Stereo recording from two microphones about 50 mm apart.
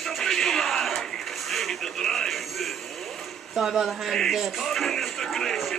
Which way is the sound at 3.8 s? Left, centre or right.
Centre.